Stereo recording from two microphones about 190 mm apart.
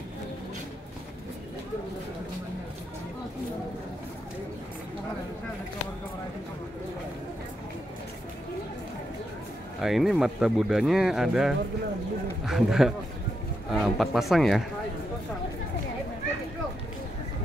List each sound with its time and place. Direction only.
9.8 s speech: centre (ahead or behind)